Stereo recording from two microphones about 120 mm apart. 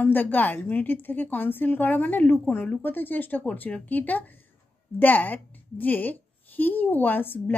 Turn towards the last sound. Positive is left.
turn(degrees=15)  # may be behind; listen again after turning